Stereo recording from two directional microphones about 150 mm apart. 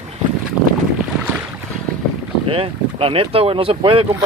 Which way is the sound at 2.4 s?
40° right (ahead or behind).